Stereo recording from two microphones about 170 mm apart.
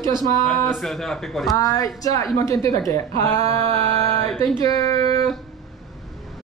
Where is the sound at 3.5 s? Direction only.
35° right (ahead or behind).